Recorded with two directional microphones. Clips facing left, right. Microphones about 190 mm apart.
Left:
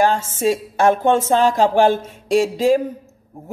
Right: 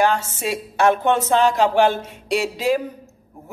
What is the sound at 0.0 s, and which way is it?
Speech, 45° left (ahead or behind).